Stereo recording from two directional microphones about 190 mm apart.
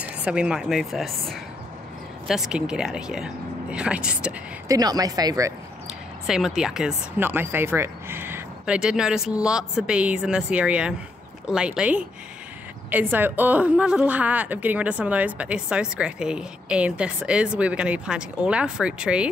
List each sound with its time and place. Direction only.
0.0 s speech: 5° right (ahead or behind)
4.6 s speech: 20° right (ahead or behind)
6.2 s a woman's voice: centre (ahead or behind)